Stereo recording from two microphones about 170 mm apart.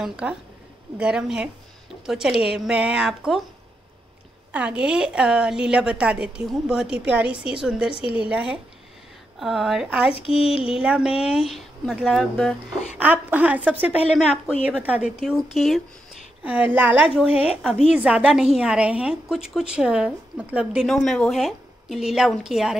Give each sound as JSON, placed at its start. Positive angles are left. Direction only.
{"t": 0.0, "sound": "a woman's voice", "side_deg": -5}
{"t": 4.5, "sound": "a woman's voice", "side_deg": -5}
{"t": 10.4, "sound": "a sound", "side_deg": 35}
{"t": 10.7, "sound": "a woman's voice", "side_deg": -5}
{"t": 12.9, "sound": "a woman's voice", "side_deg": -10}